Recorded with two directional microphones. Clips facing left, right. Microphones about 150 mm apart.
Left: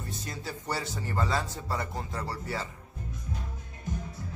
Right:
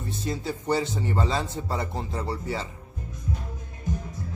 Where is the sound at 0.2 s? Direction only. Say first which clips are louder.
Right 8 dB; 25° right (ahead or behind).